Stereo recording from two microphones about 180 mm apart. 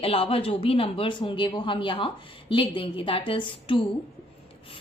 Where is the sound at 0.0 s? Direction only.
30° left (ahead or behind).